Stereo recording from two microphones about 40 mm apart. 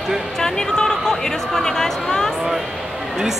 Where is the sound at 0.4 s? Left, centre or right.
Centre.